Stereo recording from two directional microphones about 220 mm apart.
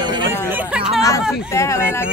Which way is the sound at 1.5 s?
15° left (ahead or behind).